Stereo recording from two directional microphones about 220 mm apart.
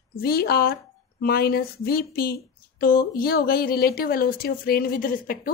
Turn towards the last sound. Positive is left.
turn(degrees=40)  # may be behind; listen again after turning